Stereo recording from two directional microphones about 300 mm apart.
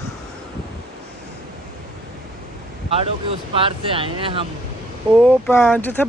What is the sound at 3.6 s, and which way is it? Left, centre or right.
Speech, centre.